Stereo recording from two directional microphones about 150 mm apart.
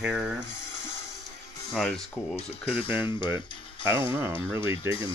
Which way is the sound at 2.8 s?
15° right (ahead or behind).